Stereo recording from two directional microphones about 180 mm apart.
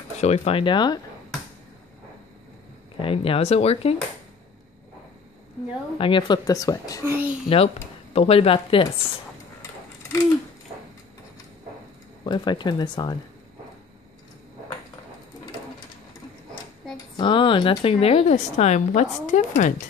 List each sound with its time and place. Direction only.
0.2 s a woman's voice: 35° left (ahead or behind)
3.0 s a woman's voice: 30° left (ahead or behind)
5.9 s a woman's voice: 30° left (ahead or behind)
7.1 s a child's voice: 10° right (ahead or behind)
7.4 s speech: 35° left (ahead or behind)
9.6 s a sound: 15° left (ahead or behind)
12.3 s a woman's voice: 25° left (ahead or behind)
17.2 s a woman's voice: 25° left (ahead or behind); by 19.7 s 45° left (ahead or behind)